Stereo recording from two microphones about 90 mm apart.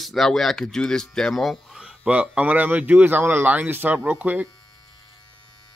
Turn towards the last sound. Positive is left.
turn(degrees=-20)  # may be behind; listen again after turning